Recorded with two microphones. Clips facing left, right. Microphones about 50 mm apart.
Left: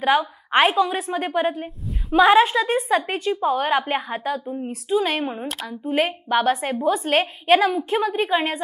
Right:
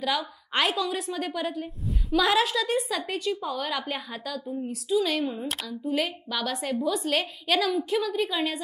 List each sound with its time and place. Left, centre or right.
0.0 s a woman's voice: left